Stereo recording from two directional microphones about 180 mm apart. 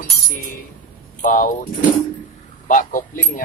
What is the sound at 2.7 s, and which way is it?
Music, 50° left (ahead or behind).